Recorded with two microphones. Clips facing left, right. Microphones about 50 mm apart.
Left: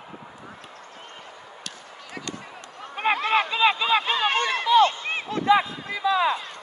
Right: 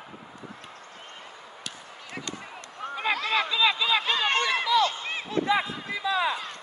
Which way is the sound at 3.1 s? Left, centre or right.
Left.